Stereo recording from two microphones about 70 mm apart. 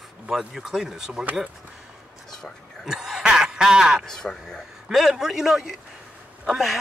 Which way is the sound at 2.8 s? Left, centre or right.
Centre.